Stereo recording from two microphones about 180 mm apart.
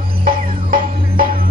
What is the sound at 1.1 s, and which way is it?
Music, 55° right (ahead or behind).